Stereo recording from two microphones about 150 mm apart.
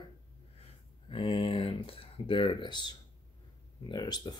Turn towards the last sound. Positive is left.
turn(degrees=30)  # may be behind; listen again after turning